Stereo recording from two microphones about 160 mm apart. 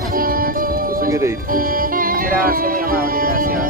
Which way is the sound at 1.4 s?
60° right (ahead or behind).